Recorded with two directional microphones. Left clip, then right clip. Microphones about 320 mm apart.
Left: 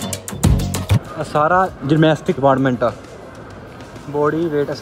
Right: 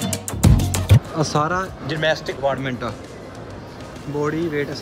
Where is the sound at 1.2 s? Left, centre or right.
Centre.